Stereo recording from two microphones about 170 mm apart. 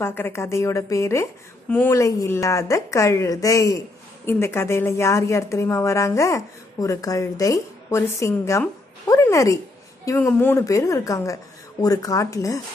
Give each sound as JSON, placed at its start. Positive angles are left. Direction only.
{"t": 0.0, "sound": "a woman's voice", "side_deg": 15}